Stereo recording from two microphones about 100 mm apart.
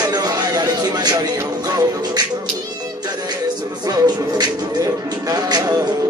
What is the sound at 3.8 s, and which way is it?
Music, 40° right (ahead or behind).